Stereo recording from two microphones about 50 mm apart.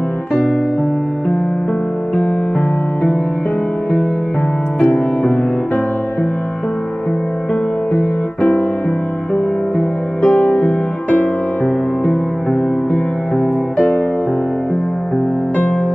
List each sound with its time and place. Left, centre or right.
4.9 s music: left
7.9 s music: left
9.8 s music: left
13.7 s music: left